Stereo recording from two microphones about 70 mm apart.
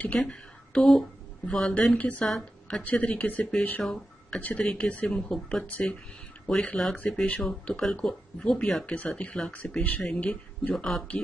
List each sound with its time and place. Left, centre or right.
0.2 s speech: centre
2.2 s a woman's voice: centre
2.8 s speech: left
3.8 s speech: centre
4.4 s speech: centre